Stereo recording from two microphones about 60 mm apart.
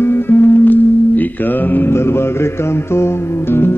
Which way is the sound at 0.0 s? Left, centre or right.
Left.